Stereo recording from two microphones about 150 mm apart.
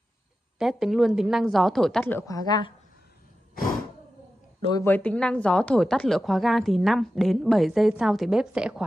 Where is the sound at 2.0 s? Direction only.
20° left (ahead or behind).